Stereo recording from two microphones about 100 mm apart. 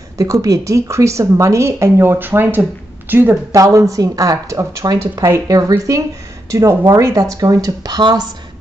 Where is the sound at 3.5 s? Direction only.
30° right (ahead or behind).